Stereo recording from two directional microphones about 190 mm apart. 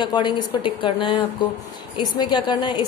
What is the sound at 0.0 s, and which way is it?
A woman's voice, 20° left (ahead or behind).